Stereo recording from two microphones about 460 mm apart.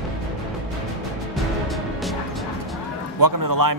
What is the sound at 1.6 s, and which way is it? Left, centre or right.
Music, centre.